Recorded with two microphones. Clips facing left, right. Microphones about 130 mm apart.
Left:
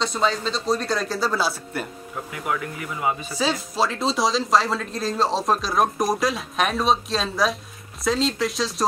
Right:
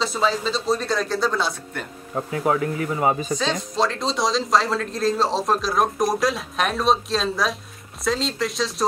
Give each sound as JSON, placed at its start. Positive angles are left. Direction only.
{"t": 0.0, "sound": "speech", "side_deg": 0}
{"t": 2.1, "sound": "speech", "side_deg": -35}
{"t": 3.3, "sound": "speech", "side_deg": 5}